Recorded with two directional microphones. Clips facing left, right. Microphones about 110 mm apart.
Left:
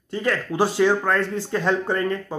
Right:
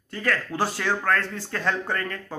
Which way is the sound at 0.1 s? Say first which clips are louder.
Left 3 dB; 20° left (ahead or behind).